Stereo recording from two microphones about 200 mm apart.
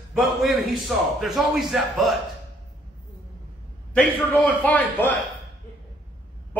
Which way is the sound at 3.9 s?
5° left (ahead or behind).